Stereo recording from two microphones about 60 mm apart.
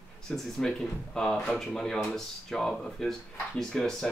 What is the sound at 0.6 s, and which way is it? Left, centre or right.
Speech, centre.